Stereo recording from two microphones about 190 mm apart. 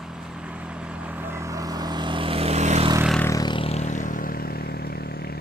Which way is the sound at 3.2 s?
20° left (ahead or behind).